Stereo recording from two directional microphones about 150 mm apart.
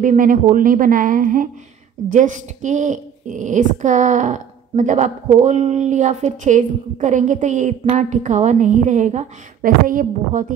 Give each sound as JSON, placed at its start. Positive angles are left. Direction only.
{"t": 0.0, "sound": "speech", "side_deg": -65}